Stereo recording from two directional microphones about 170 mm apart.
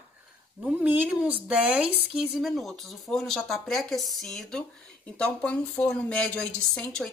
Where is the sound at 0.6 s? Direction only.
10° right (ahead or behind).